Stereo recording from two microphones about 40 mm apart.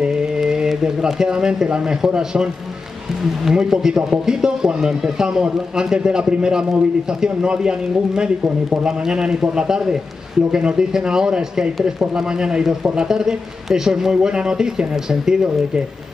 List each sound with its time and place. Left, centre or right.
0.0 s mantra: right
0.4 s a man's voice: centre